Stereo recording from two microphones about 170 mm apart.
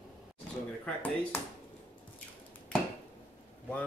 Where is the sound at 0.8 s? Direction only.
10° left (ahead or behind).